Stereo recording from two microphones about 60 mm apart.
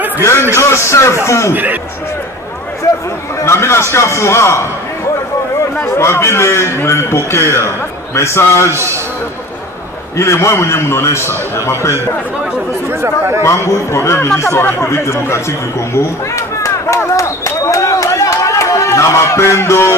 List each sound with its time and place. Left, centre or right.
0.2 s a man's voice: left
1.5 s speech: right
3.4 s a man's voice: left
5.9 s a man's voice: left
10.1 s a man's voice: left
13.4 s a man's voice: left
17.2 s a sound: left